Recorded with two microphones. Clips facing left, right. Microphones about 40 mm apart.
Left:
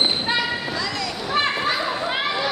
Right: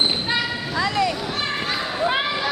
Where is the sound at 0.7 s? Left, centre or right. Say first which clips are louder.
Right 5 dB; right.